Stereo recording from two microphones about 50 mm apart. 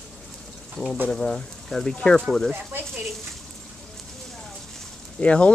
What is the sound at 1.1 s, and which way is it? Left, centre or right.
Speech, left.